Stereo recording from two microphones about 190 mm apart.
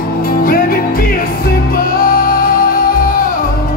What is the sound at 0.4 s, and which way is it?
Music, 50° left (ahead or behind).